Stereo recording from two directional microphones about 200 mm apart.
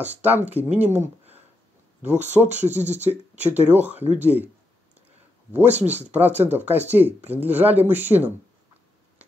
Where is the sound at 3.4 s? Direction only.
10° right (ahead or behind).